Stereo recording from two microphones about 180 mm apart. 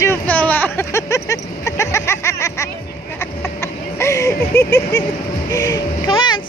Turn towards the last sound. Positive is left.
turn(degrees=25)  # may be behind; listen again after turning